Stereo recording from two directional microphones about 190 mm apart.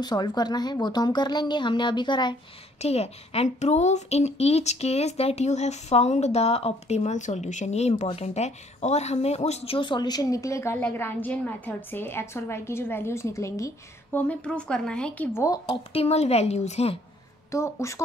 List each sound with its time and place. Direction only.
0.0 s a woman's voice: 20° left (ahead or behind)
15.9 s a woman's voice: 35° left (ahead or behind)
17.5 s a woman's voice: 15° left (ahead or behind)